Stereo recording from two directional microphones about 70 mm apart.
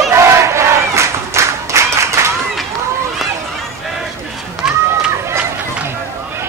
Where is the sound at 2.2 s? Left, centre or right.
Right.